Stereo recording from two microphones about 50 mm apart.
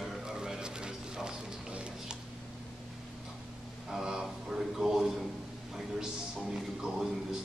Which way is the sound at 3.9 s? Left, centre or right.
Centre.